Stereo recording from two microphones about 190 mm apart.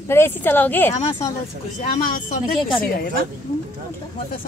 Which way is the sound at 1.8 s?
40° left (ahead or behind).